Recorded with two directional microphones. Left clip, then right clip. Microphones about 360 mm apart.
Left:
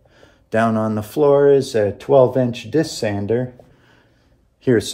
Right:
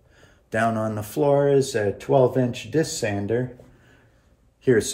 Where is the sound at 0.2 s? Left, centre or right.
Left.